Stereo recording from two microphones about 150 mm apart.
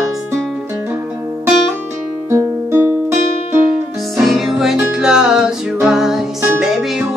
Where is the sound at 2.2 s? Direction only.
15° right (ahead or behind).